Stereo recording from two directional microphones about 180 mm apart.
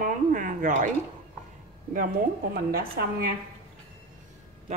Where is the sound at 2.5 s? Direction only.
55° right (ahead or behind).